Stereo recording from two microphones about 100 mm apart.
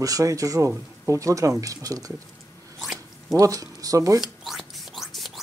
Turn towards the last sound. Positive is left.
turn(degrees=0)  # may be behind; listen again after turning